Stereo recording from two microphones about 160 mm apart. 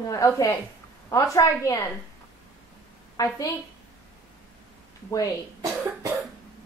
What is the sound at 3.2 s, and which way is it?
Speech, 20° left (ahead or behind).